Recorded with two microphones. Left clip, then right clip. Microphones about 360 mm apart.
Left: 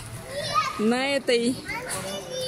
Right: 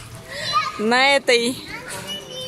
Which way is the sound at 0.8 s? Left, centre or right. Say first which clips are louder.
Right 8 dB; centre.